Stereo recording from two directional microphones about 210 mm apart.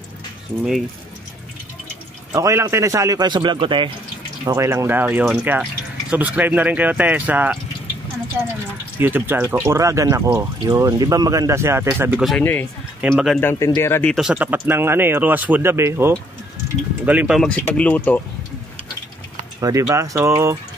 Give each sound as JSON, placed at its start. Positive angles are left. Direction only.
{"t": 2.3, "sound": "speech", "side_deg": -15}
{"t": 4.5, "sound": "speech", "side_deg": -15}
{"t": 9.0, "sound": "speech", "side_deg": -10}
{"t": 14.1, "sound": "speech", "side_deg": -5}
{"t": 19.6, "sound": "speech", "side_deg": -15}